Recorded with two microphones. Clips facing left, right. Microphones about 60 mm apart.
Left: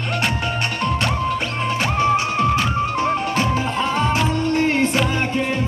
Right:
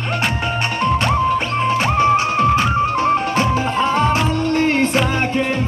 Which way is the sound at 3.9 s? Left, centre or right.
Right.